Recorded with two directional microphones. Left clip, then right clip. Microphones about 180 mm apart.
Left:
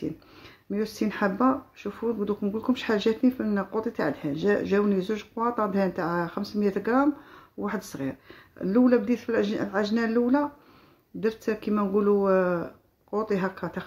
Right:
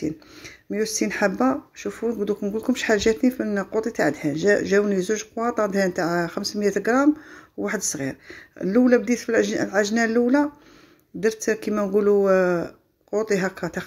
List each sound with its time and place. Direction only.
0.7 s speech: 15° right (ahead or behind)
11.4 s speech: 15° right (ahead or behind)